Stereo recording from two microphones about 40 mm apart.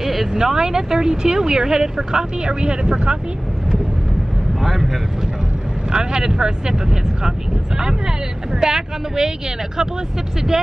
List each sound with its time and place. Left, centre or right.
0.0 s speech: centre; by 3.2 s right
4.6 s speech: centre
5.9 s speech: centre
10.5 s speech: centre